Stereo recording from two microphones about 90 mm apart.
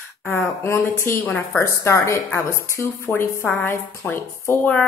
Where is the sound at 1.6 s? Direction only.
35° left (ahead or behind).